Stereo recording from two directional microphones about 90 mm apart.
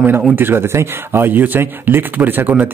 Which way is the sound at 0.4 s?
25° right (ahead or behind).